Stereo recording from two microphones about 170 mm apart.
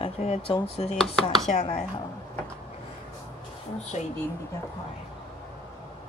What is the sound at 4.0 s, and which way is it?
Speech, 40° left (ahead or behind).